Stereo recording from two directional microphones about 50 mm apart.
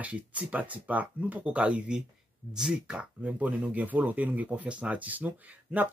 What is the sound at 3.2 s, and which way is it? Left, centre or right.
Speech, right.